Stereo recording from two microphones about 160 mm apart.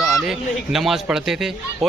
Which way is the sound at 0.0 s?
5° right (ahead or behind).